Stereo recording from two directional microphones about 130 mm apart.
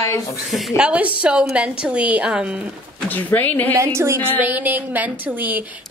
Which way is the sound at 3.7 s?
20° right (ahead or behind).